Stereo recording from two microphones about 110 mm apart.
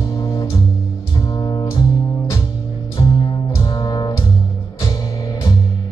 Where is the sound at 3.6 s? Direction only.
35° left (ahead or behind).